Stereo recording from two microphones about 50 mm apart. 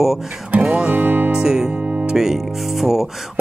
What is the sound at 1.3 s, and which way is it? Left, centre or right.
Speech, centre.